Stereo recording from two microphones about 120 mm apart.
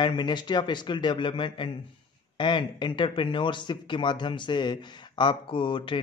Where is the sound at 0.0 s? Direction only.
40° left (ahead or behind).